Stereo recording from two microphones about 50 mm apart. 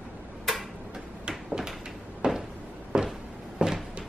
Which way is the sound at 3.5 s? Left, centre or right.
Centre.